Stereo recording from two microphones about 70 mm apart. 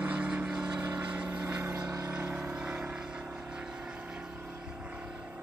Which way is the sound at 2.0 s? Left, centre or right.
Right.